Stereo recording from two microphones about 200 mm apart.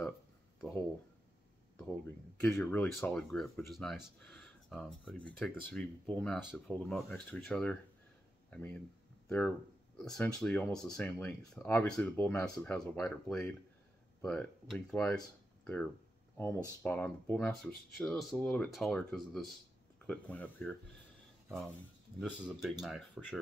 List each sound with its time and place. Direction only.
0.6 s speech: 15° left (ahead or behind)
10.0 s speech: 5° left (ahead or behind)
10.8 s speech: 15° left (ahead or behind)
11.1 s speech: 5° left (ahead or behind)
22.2 s speech: 5° right (ahead or behind)